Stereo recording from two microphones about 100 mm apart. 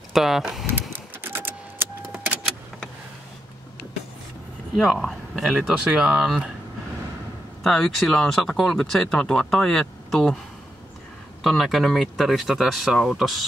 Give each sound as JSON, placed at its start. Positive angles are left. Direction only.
{"t": 0.1, "sound": "speech", "side_deg": -5}
{"t": 0.7, "sound": "a sound", "side_deg": -20}
{"t": 4.7, "sound": "speech", "side_deg": 0}
{"t": 7.6, "sound": "speech", "side_deg": 5}
{"t": 11.4, "sound": "speech", "side_deg": 0}